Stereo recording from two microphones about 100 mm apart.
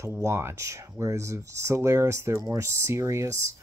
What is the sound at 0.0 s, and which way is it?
Speech, 30° right (ahead or behind).